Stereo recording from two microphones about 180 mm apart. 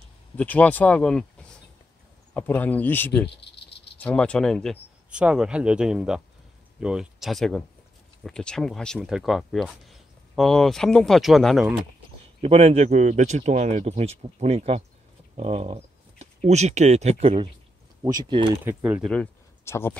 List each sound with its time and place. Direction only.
0.4 s speech: 10° left (ahead or behind)
2.3 s speech: 10° left (ahead or behind)
3.3 s cricket: 70° left (ahead or behind)
4.0 s speech: 5° left (ahead or behind)
12.4 s speech: 35° right (ahead or behind)
18.0 s speech: 20° right (ahead or behind)
18.7 s speech: 5° right (ahead or behind)
19.1 s speech: 15° left (ahead or behind)